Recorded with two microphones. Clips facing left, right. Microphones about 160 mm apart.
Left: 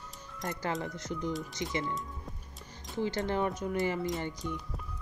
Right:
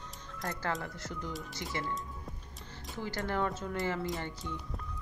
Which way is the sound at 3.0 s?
20° left (ahead or behind).